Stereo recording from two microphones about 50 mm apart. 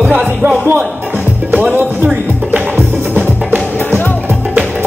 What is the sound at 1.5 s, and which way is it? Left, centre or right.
Music, right.